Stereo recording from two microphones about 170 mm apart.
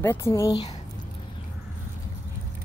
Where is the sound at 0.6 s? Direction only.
40° left (ahead or behind).